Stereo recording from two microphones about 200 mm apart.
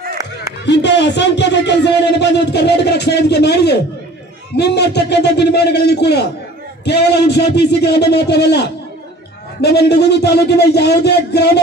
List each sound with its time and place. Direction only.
0.7 s speech: 60° left (ahead or behind)